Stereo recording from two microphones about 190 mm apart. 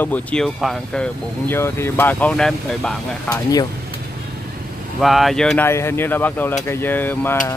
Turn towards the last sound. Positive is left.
turn(degrees=10)  # may be behind; listen again after turning